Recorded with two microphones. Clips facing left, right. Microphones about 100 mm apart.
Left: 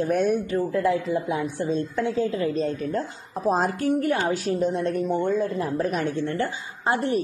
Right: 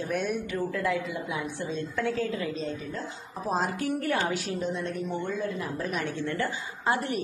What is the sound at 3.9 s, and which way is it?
Speech, 20° left (ahead or behind).